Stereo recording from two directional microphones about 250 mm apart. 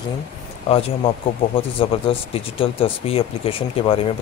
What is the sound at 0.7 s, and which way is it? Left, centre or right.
Speech, left.